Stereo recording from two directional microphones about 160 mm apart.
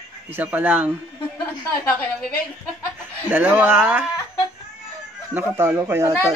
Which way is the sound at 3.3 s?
10° right (ahead or behind).